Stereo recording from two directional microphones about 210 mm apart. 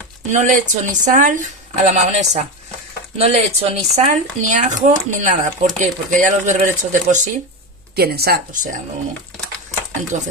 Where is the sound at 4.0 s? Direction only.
35° right (ahead or behind).